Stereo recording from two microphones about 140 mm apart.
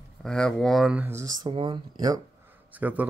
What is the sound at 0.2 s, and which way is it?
Speech, 5° left (ahead or behind).